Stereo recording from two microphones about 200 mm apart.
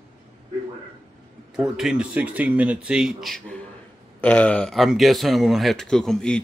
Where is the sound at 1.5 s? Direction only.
5° right (ahead or behind).